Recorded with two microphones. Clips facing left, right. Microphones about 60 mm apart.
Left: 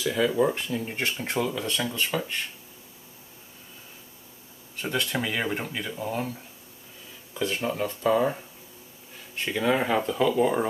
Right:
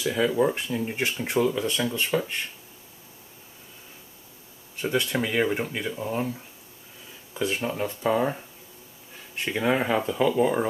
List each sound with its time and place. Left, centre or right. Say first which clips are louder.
0.0 s speech: even; centre
2.0 s speech: right 2 dB; centre
4.8 s speech: right 3 dB; centre
7.3 s speech: even; centre
9.6 s speech: even; centre